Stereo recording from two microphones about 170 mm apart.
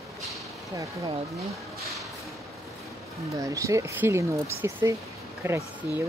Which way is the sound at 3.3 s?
20° right (ahead or behind).